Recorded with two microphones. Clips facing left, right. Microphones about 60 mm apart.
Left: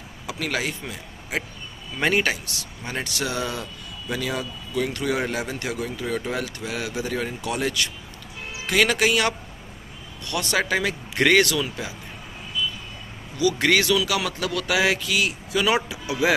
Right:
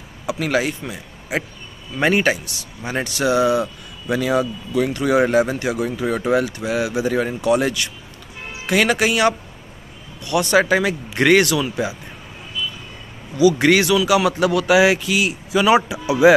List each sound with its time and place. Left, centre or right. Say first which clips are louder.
0.3 s a man's voice: right 7 dB; centre
5.2 s speech: right 11 dB; right
5.6 s speech: right 7 dB; centre
13.4 s speech: right 6 dB; centre